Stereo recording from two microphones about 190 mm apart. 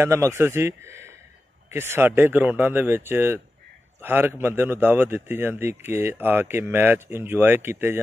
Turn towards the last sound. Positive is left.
turn(degrees=-10)  # may be behind; listen again after turning